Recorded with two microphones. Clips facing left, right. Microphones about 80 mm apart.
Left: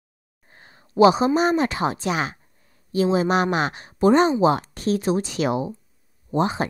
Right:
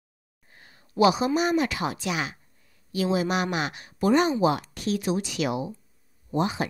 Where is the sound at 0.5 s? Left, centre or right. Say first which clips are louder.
Left 4 dB; left.